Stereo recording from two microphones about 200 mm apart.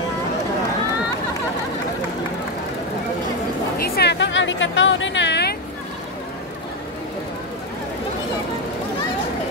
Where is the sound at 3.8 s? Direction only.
55° left (ahead or behind).